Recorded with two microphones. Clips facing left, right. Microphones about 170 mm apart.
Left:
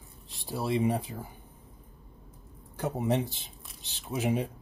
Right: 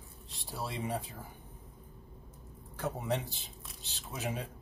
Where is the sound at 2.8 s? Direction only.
20° left (ahead or behind).